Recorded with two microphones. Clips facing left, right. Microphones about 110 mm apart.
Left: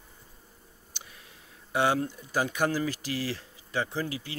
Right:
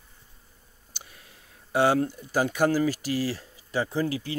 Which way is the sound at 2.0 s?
35° right (ahead or behind).